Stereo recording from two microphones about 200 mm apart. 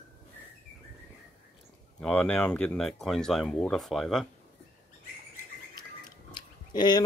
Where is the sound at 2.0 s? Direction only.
5° left (ahead or behind).